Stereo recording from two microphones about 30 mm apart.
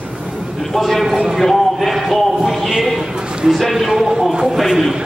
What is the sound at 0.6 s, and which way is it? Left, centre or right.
A man's voice, centre.